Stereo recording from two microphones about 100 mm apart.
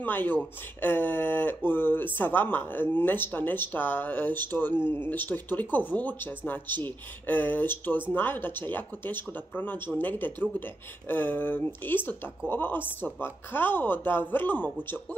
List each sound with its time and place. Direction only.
0.0 s speech: 20° left (ahead or behind)